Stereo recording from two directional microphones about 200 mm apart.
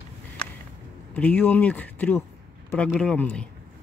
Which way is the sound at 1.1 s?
5° left (ahead or behind).